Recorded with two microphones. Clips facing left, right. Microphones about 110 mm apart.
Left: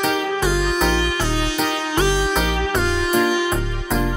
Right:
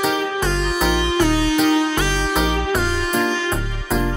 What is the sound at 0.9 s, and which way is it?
Music, 20° right (ahead or behind).